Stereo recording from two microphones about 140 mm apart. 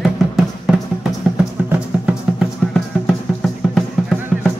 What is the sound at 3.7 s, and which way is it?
Music, centre (ahead or behind).